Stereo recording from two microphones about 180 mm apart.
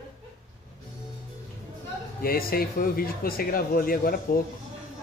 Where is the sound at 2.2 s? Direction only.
55° left (ahead or behind).